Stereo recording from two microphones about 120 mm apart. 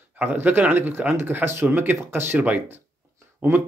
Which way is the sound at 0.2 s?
20° right (ahead or behind).